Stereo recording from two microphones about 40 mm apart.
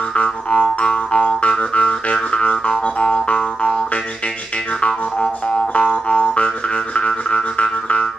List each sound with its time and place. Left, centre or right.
0.1 s music: left
5.8 s music: left